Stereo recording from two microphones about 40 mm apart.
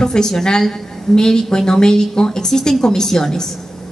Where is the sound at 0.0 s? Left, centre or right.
Centre.